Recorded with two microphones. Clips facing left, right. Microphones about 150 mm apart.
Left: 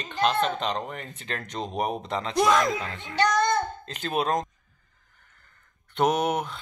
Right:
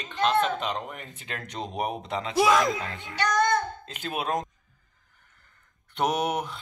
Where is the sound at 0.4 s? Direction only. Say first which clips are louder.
Even; 5° right (ahead or behind).